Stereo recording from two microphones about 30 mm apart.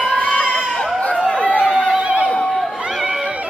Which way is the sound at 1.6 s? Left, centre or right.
Right.